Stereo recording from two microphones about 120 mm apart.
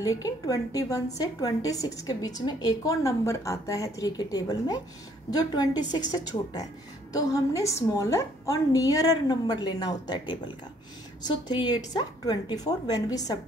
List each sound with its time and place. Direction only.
0.0 s a woman's voice: 30° left (ahead or behind)